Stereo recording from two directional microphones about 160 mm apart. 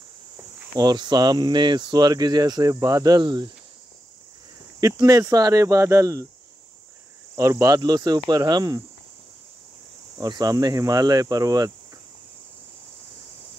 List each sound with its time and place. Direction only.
0.7 s speech: 25° right (ahead or behind)
4.7 s speech: 20° right (ahead or behind)
7.3 s speech: 20° right (ahead or behind)
10.2 s speech: 25° right (ahead or behind)